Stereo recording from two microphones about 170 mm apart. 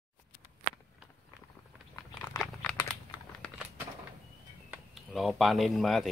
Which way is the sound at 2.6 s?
5° left (ahead or behind).